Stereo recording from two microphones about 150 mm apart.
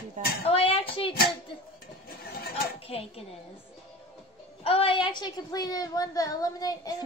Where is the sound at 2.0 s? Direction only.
90° left.